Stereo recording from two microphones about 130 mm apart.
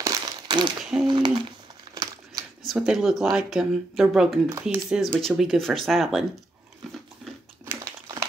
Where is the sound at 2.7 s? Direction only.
5° right (ahead or behind).